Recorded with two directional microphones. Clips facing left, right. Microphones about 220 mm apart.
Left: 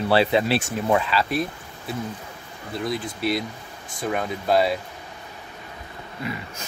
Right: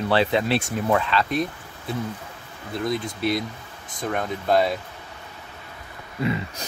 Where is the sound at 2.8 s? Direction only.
Centre (ahead or behind).